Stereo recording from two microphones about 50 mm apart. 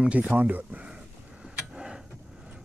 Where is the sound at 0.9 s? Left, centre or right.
Centre.